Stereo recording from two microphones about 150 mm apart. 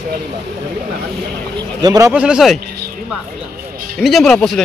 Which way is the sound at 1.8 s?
25° right (ahead or behind).